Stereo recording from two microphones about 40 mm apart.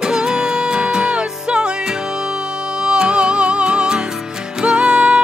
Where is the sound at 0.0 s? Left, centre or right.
Centre.